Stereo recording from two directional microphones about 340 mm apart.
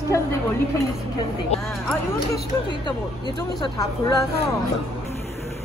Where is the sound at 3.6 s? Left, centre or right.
Centre.